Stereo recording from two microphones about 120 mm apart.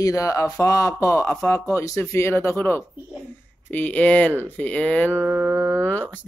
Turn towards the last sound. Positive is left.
turn(degrees=15)  # may be behind; listen again after turning